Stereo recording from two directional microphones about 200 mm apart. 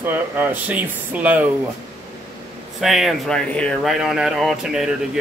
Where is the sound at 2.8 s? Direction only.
Centre (ahead or behind).